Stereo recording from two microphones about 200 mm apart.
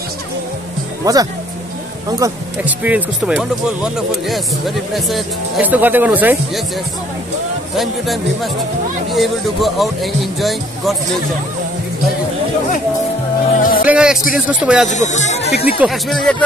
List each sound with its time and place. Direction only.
1.0 s speech: 15° right (ahead or behind)
7.7 s speech: centre (ahead or behind)
13.6 s speech: 45° left (ahead or behind)
13.8 s speech: 5° right (ahead or behind)
14.9 s speech: 35° left (ahead or behind)
15.8 s speech: centre (ahead or behind)